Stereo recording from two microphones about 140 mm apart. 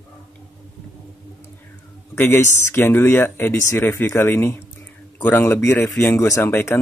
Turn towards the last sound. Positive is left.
turn(degrees=20)  # may be behind; listen again after turning